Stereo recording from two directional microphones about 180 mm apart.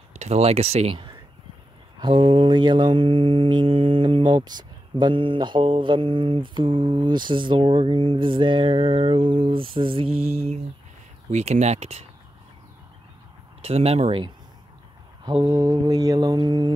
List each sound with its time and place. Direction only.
0.1 s speech: 40° right (ahead or behind)
2.0 s mantra: 30° right (ahead or behind)
10.1 s speech: 35° right (ahead or behind)
13.6 s speech: 35° right (ahead or behind)
15.2 s mantra: 25° right (ahead or behind)